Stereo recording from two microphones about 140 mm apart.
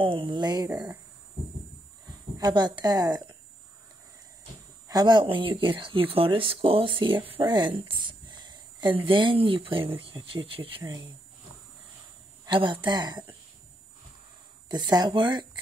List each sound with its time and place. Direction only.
0.0 s speech: 35° right (ahead or behind)
2.0 s speech: 25° right (ahead or behind)
4.8 s a woman's voice: 30° right (ahead or behind)
10.8 s speech: 25° right (ahead or behind)
12.4 s speech: 35° right (ahead or behind)
14.7 s speech: 30° right (ahead or behind)